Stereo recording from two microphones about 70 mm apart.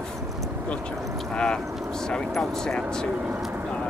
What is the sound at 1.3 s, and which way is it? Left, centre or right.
Speech, centre.